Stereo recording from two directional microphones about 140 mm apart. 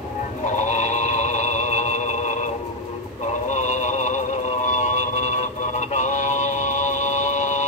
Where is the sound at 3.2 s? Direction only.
60° left (ahead or behind).